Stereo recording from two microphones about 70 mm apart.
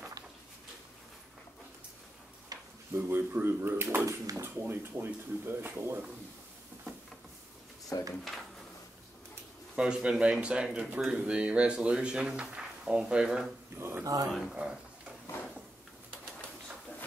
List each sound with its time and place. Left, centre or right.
2.5 s a sound: right
3.1 s speech: right
7.9 s speech: left
9.8 s speech: centre
13.7 s speech: right
14.0 s speech: right
14.5 s speech: centre